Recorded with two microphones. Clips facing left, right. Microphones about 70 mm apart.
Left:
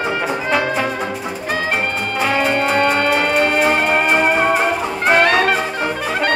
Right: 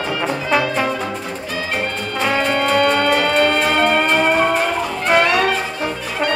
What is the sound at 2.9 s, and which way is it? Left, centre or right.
Music, left.